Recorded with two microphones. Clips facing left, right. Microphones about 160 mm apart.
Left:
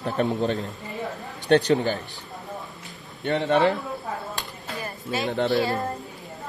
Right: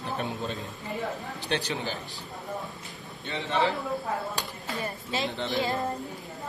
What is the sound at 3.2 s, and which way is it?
Speech, 55° left (ahead or behind).